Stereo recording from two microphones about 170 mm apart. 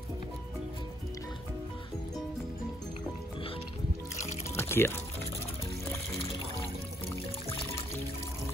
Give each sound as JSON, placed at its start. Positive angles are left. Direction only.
{"t": 4.6, "sound": "music", "side_deg": 15}